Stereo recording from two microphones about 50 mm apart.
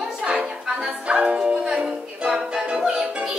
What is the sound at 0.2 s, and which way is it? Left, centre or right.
Music, right.